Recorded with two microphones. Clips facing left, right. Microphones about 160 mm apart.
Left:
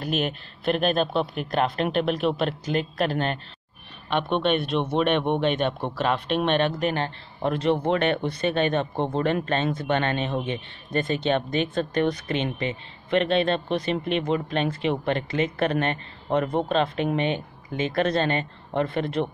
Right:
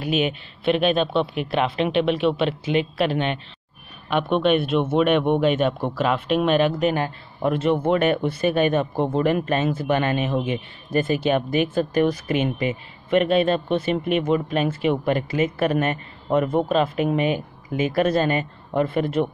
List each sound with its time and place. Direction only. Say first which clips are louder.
0.0 s speech: right 4 dB; 5° right (ahead or behind)
0.7 s speech: right 2 dB; 40° left (ahead or behind)
1.0 s speech: right 3 dB; 5° right (ahead or behind)
1.5 s speech: right 1 dB; 45° left (ahead or behind)
4.1 s speech: right 4 dB; 5° right (ahead or behind)